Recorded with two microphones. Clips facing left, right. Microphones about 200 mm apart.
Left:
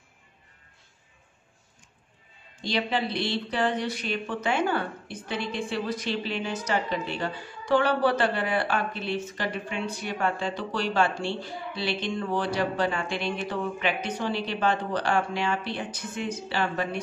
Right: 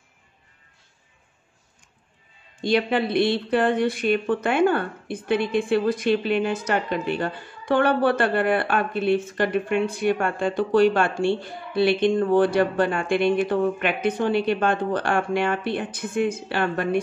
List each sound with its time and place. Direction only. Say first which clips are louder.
2.6 s speech: right 6 dB; 55° right (ahead or behind)